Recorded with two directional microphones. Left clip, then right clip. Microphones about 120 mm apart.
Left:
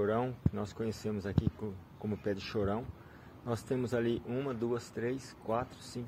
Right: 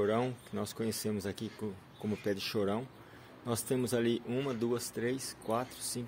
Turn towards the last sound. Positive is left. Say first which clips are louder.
# right 1 dB
turn(degrees=-45)  # may be behind; listen again after turning